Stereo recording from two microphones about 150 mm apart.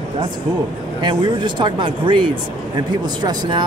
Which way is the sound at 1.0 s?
30° right (ahead or behind).